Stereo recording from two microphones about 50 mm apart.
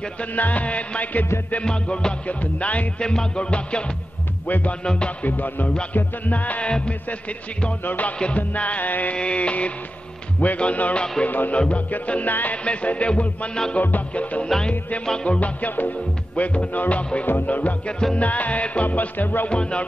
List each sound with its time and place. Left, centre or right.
0.3 s music: left; by 2.1 s centre
2.2 s music: left
3.0 s music: centre
4.5 s music: left
4.8 s music: left
5.2 s music: left
9.1 s music: left
11.2 s music: left
17.3 s music: left
19.5 s music: left